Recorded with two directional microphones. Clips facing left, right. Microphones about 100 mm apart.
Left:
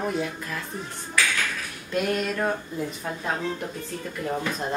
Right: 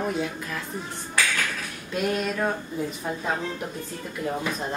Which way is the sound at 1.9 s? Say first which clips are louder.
Left 1 dB; 5° right (ahead or behind).